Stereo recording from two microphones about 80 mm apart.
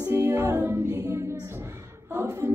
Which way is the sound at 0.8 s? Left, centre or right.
Right.